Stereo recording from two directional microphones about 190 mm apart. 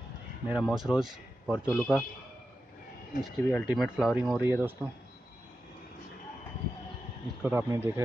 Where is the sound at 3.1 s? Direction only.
45° left (ahead or behind).